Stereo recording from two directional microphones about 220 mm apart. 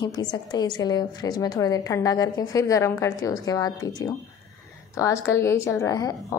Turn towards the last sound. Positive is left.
turn(degrees=15)  # may be behind; listen again after turning